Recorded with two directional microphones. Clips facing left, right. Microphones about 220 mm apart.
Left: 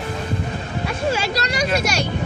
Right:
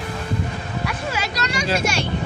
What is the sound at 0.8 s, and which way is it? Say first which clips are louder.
Speech: left 6 dB; 30° left (ahead or behind).